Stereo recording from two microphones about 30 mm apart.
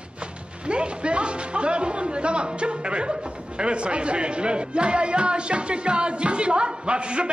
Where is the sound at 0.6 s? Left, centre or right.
Right.